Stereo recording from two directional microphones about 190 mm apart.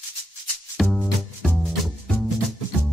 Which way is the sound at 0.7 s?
Centre (ahead or behind).